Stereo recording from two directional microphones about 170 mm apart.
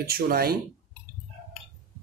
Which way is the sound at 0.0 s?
60° right (ahead or behind).